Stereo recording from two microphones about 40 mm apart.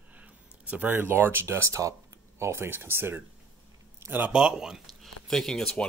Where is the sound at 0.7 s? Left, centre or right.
Right.